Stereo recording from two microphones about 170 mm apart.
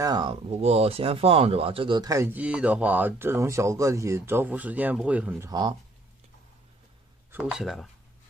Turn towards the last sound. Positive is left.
turn(degrees=0)  # may be behind; listen again after turning